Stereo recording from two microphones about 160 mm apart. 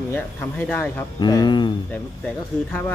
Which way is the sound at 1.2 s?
25° left (ahead or behind).